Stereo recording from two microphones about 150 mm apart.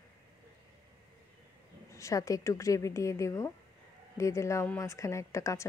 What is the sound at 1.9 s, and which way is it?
A woman's voice, 20° left (ahead or behind).